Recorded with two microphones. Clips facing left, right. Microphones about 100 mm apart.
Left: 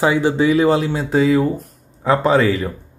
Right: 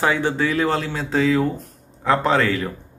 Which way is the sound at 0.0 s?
15° left (ahead or behind).